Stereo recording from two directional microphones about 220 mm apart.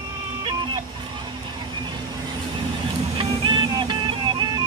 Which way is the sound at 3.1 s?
25° right (ahead or behind).